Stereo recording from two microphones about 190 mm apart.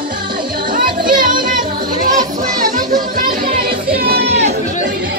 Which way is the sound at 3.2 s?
50° right (ahead or behind).